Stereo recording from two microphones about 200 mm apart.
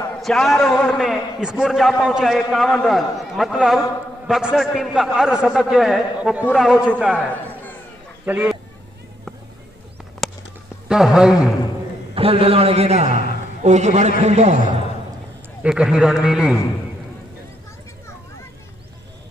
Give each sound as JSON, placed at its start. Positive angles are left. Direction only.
{"t": 0.2, "sound": "a man's voice", "side_deg": 0}
{"t": 7.2, "sound": "chatter", "side_deg": 5}
{"t": 8.3, "sound": "speech", "side_deg": -10}
{"t": 10.2, "sound": "a sound", "side_deg": 0}
{"t": 10.9, "sound": "a man's voice", "side_deg": -5}
{"t": 12.2, "sound": "a man's voice", "side_deg": -30}
{"t": 15.6, "sound": "a man's voice", "side_deg": -5}